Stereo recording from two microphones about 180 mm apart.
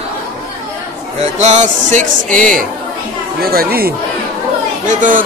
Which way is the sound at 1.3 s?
40° right (ahead or behind).